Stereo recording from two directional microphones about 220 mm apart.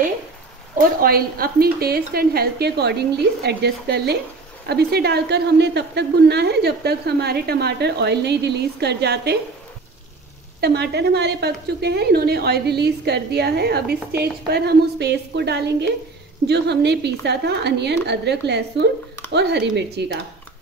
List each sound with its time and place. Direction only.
0.7 s speech: 40° right (ahead or behind)
10.6 s speech: 50° right (ahead or behind)